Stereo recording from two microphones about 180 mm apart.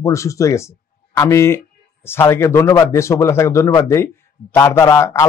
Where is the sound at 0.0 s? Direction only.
15° left (ahead or behind).